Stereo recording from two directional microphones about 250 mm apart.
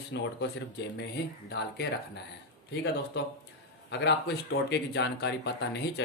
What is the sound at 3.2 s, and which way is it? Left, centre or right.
Speech, left.